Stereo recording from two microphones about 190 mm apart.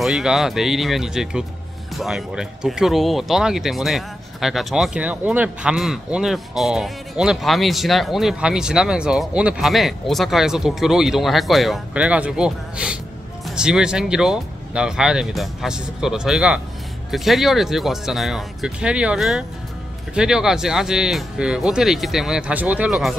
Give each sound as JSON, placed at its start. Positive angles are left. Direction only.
{"t": 0.0, "sound": "speech", "side_deg": 0}